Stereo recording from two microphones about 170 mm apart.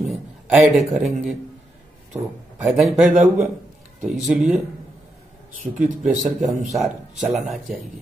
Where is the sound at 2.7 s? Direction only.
Centre (ahead or behind).